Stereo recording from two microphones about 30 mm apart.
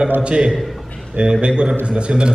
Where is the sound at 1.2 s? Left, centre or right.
Right.